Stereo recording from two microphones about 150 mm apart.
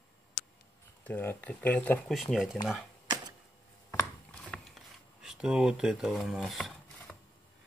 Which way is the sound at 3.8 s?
20° left (ahead or behind).